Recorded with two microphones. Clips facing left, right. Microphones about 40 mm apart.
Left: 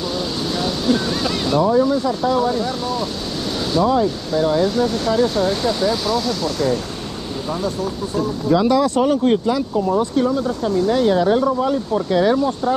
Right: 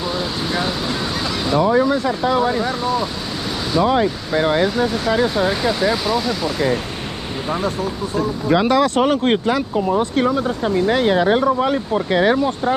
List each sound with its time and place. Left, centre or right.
0.5 s a sound: right
1.6 s speech: right
2.8 s speech: centre
3.8 s speech: right
4.6 s speech: right
7.4 s speech: right
8.5 s speech: right